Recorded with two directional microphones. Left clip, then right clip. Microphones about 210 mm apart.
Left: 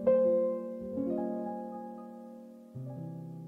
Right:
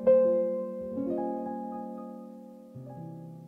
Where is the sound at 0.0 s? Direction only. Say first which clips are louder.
Right 3 dB; 10° left (ahead or behind).